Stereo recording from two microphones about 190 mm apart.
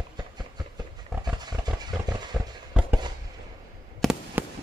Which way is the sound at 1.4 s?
20° right (ahead or behind).